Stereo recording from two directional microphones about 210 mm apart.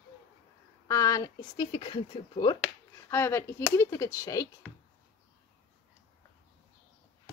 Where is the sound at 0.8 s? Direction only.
15° left (ahead or behind).